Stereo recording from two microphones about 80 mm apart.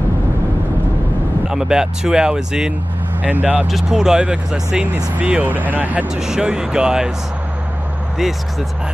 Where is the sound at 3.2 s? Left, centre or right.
Centre.